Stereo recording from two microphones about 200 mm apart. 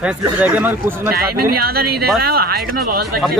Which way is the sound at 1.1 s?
50° right (ahead or behind).